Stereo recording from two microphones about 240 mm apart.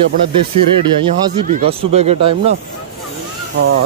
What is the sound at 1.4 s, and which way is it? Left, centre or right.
Speech, right.